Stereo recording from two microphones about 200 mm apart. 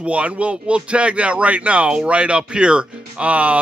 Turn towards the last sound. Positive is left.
turn(degrees=-5)  # may be behind; listen again after turning